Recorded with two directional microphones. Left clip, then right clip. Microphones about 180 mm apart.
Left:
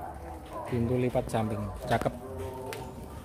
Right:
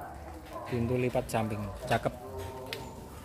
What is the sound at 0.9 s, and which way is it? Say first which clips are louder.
Speech: left 1 dB; 10° right (ahead or behind).